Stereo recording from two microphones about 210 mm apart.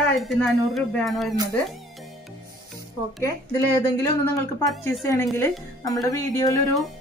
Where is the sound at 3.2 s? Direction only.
15° left (ahead or behind).